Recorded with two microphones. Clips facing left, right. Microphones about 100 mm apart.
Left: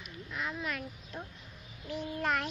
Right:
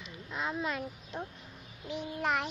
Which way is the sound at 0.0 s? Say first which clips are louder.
Right 2 dB; 25° right (ahead or behind).